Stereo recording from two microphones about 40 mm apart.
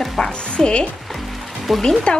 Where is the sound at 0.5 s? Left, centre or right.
Left.